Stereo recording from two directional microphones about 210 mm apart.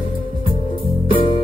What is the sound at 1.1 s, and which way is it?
Music, 25° left (ahead or behind).